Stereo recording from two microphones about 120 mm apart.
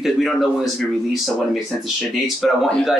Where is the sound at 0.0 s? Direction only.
Centre (ahead or behind).